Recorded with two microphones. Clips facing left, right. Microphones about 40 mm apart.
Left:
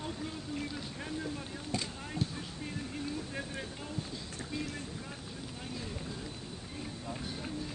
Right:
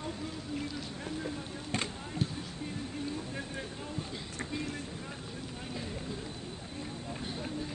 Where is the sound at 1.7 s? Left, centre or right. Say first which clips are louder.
Right 2 dB; right.